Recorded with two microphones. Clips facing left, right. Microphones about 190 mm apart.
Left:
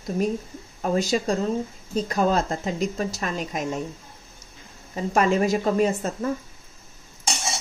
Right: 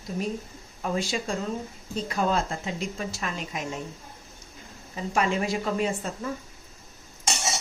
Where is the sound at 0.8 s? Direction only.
40° left (ahead or behind).